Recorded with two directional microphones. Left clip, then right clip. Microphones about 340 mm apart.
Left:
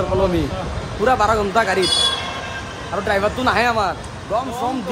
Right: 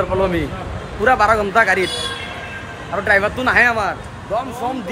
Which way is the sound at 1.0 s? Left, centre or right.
Centre.